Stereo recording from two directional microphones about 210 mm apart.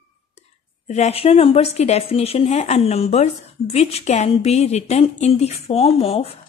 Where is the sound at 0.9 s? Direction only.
30° left (ahead or behind).